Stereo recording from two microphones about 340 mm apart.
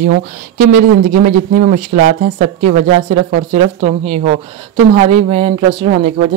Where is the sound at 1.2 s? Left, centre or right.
Right.